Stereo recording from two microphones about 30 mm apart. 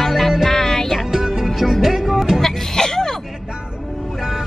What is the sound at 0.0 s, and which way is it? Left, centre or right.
Music, centre.